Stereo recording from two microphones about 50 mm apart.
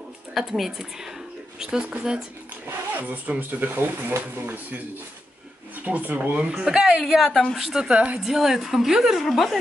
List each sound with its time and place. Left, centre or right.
0.3 s a woman's voice: centre
2.9 s speech: right
5.9 s speech: right
6.3 s speech: right
7.2 s a woman's voice: centre
7.9 s speech: right
8.2 s a woman's voice: centre